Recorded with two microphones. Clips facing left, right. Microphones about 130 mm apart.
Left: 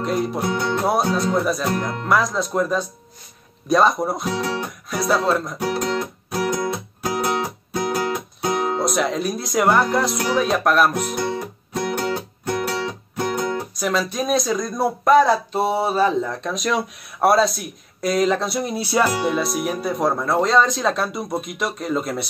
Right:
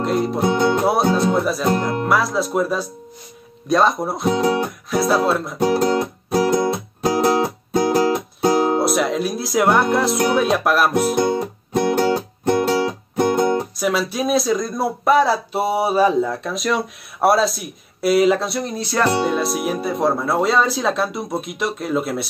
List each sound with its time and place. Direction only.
0.0 s music: centre (ahead or behind)
0.4 s music: 25° right (ahead or behind)
1.3 s speech: centre (ahead or behind)
4.2 s speech: 20° right (ahead or behind)
4.8 s speech: centre (ahead or behind)
5.9 s music: 25° right (ahead or behind)
8.8 s speech: centre (ahead or behind)
10.9 s music: 30° right (ahead or behind)
13.7 s speech: 5° right (ahead or behind)
18.6 s speech: 10° left (ahead or behind)